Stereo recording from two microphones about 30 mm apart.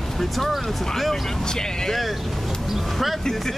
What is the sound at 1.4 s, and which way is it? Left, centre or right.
Speech, centre.